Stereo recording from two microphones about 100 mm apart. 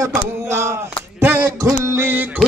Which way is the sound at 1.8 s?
25° right (ahead or behind).